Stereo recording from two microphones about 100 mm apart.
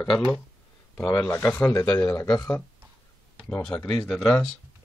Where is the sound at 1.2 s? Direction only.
20° left (ahead or behind).